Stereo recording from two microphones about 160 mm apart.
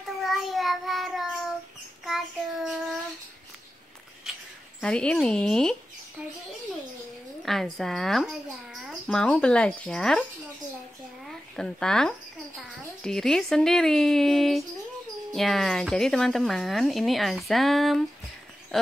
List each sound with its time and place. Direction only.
0.2 s a sound: centre (ahead or behind)
2.0 s child singing: centre (ahead or behind)
4.8 s speech: 5° left (ahead or behind)
7.4 s speech: centre (ahead or behind)
11.5 s speech: 5° left (ahead or behind)